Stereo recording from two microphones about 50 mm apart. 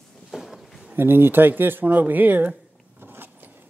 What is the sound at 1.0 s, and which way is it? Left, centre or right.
Speech, right.